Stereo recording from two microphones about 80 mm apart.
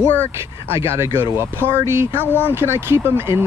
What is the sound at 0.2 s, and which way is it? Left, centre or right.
Speech, right.